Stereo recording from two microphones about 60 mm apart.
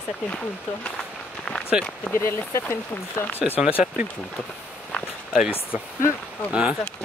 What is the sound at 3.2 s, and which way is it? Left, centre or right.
Speech, left.